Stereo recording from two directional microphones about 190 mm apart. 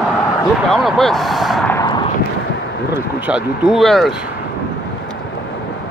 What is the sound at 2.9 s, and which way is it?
Speech, 5° right (ahead or behind).